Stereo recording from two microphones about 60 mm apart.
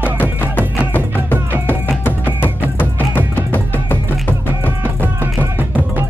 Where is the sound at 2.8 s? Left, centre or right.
Left.